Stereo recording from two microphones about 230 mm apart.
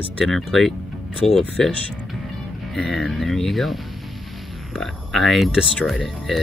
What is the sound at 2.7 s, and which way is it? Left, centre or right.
Speech, centre.